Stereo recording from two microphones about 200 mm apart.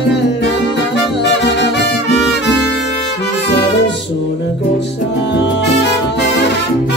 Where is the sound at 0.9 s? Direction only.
55° left (ahead or behind).